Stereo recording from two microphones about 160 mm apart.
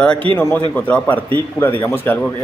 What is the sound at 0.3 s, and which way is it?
Speech, 35° right (ahead or behind).